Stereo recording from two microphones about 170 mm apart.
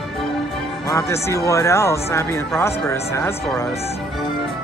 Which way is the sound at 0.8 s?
15° left (ahead or behind).